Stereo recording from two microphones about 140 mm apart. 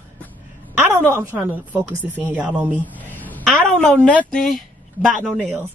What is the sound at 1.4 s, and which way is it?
Speech, 15° right (ahead or behind).